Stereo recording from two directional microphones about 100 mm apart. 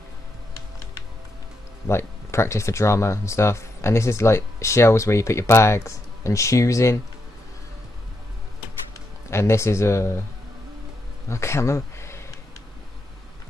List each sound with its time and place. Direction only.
1.9 s speech: 25° left (ahead or behind)
9.3 s speech: 25° left (ahead or behind)
11.2 s speech: 30° left (ahead or behind)